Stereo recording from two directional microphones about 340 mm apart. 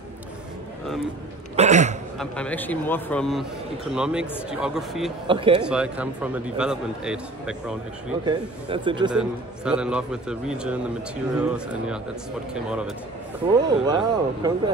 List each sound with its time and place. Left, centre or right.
1.6 s a sound: centre
2.1 s a man's voice: centre
5.3 s speech: centre
5.7 s a man's voice: centre
8.3 s speech: centre
9.7 s a man's voice: centre
13.5 s speech: centre